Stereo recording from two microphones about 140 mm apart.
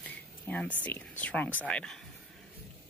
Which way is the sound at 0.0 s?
10° left (ahead or behind).